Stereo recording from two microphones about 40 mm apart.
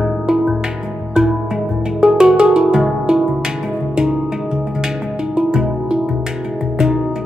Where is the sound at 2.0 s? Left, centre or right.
Centre.